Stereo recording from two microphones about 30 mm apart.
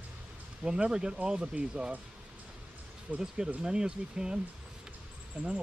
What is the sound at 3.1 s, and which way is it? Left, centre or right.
Speech, right.